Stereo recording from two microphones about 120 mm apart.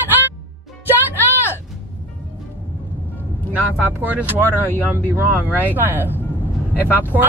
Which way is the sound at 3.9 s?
15° right (ahead or behind).